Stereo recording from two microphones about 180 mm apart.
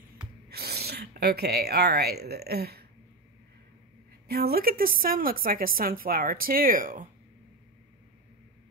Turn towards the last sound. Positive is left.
turn(degrees=-50)  # may be behind; listen again after turning